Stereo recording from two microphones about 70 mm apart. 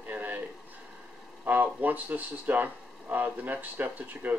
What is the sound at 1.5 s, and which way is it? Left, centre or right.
Speech, right.